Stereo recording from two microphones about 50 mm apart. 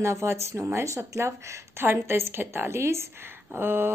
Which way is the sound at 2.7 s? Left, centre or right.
Right.